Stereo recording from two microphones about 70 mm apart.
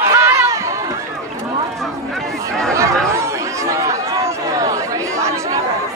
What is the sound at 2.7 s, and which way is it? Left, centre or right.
Chatter, right.